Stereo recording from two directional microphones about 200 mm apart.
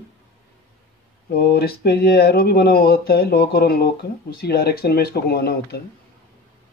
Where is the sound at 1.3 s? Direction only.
50° left (ahead or behind).